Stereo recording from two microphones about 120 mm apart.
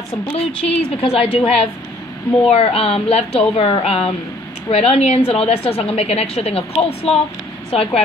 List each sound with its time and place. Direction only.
0.3 s a woman's voice: 60° left (ahead or behind)